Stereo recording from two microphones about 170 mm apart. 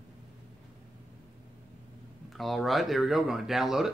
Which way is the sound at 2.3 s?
Centre (ahead or behind).